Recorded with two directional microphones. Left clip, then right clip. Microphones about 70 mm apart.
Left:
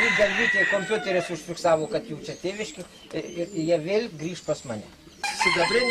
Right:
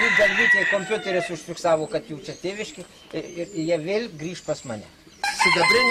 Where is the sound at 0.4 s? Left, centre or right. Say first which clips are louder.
Right 3 dB; centre.